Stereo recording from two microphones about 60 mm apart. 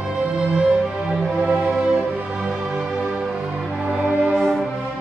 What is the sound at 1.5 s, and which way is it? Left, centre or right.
Music, centre.